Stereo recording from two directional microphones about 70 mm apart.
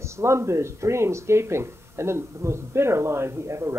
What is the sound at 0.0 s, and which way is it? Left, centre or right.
Speech, right.